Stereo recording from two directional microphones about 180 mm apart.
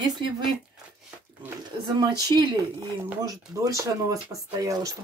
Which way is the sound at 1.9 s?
25° right (ahead or behind).